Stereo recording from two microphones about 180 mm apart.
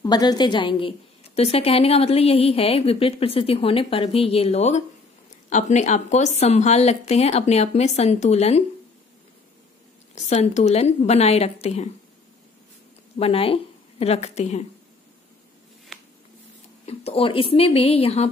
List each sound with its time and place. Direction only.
0.0 s a woman's voice: 20° left (ahead or behind)
10.1 s a woman's voice: 40° left (ahead or behind)
13.2 s a woman's voice: 30° left (ahead or behind)
16.8 s a woman's voice: 35° left (ahead or behind)